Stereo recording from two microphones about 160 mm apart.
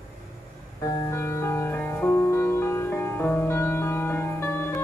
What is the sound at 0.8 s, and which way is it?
Music, 15° left (ahead or behind).